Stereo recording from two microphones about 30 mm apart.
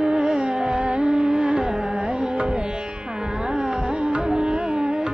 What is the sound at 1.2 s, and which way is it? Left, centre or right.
Carnatic music, right.